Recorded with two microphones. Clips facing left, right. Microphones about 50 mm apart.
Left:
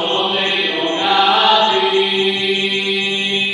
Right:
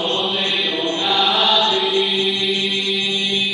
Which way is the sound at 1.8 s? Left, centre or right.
Centre.